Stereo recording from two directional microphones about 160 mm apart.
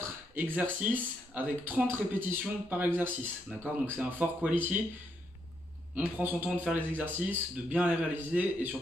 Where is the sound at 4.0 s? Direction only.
10° right (ahead or behind).